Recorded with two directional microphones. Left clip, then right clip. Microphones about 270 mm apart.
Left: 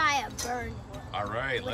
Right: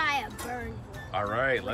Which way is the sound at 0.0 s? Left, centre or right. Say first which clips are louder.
Left 2 dB; centre.